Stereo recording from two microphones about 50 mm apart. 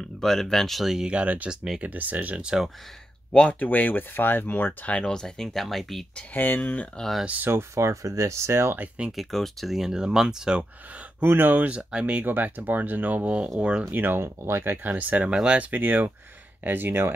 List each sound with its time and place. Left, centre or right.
0.2 s speech: centre
1.0 s speech: right
1.5 s speech: centre
1.8 s speech: right
3.5 s speech: left
4.8 s speech: left
5.1 s speech: centre
6.3 s speech: left
7.7 s speech: right
8.7 s speech: right
9.1 s speech: centre
11.1 s speech: right
12.3 s speech: right
13.9 s speech: right